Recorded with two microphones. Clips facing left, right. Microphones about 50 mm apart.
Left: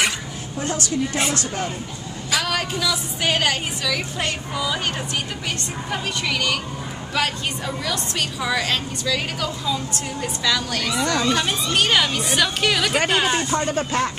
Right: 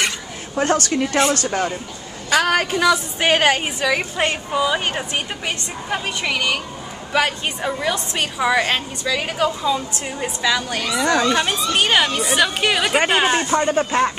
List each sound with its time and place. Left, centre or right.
0.6 s a woman's voice: right; by 14.1 s centre